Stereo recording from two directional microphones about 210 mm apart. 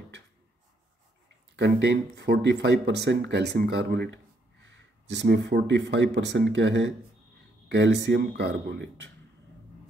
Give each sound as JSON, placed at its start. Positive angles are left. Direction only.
{"t": 1.6, "sound": "speech", "side_deg": -55}